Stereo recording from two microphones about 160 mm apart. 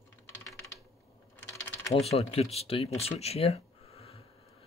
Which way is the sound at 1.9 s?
40° left (ahead or behind).